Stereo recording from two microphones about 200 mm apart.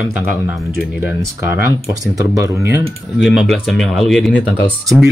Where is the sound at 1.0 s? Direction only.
15° right (ahead or behind).